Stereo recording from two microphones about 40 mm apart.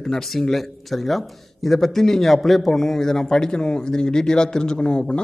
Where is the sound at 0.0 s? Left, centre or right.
Centre.